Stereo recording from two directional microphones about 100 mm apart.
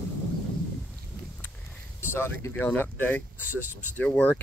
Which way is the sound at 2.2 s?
25° left (ahead or behind).